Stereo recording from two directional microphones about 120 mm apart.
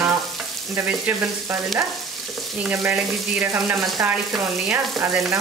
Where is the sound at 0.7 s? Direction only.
15° right (ahead or behind).